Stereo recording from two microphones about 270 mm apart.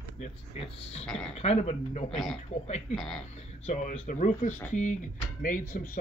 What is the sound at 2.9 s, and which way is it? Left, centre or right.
Speech, centre.